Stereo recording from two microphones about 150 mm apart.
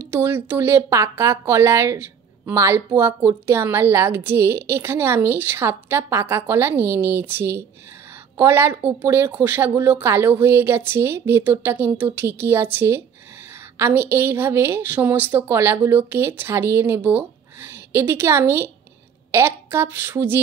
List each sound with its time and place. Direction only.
0.0 s a woman's voice: 15° right (ahead or behind)